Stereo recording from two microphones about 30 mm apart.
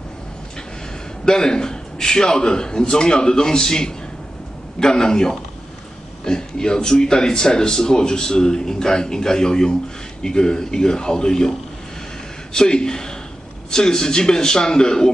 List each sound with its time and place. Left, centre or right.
1.2 s speech: left
12.5 s speech: left